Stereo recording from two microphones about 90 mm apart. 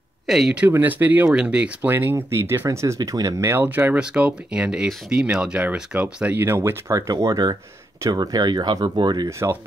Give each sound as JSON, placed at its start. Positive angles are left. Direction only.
{"t": 0.3, "sound": "speech", "side_deg": -5}
{"t": 0.7, "sound": "speech", "side_deg": -20}
{"t": 1.9, "sound": "speech", "side_deg": -25}
{"t": 3.6, "sound": "speech", "side_deg": -20}
{"t": 6.3, "sound": "speech", "side_deg": -25}
{"t": 7.0, "sound": "speech", "side_deg": -40}